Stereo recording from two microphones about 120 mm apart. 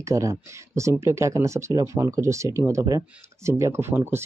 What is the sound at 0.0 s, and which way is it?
Speech, 25° right (ahead or behind).